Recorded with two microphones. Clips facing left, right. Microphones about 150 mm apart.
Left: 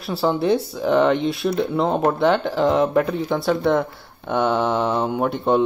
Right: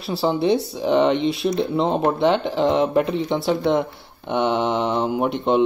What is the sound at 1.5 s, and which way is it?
Speech, 25° right (ahead or behind).